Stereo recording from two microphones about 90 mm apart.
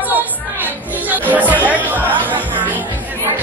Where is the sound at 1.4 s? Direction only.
20° left (ahead or behind).